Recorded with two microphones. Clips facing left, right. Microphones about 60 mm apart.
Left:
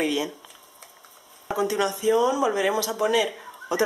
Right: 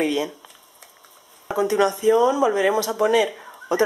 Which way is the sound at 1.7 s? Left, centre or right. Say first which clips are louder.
Right 6 dB; right.